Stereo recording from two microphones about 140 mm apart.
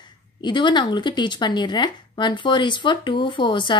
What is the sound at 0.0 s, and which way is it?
Speech, 35° left (ahead or behind).